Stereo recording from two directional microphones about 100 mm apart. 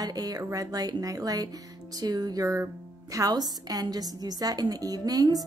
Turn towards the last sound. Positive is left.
turn(degrees=-40)  # may be behind; listen again after turning